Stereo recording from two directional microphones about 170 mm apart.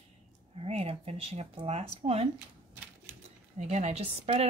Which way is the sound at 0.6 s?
35° right (ahead or behind).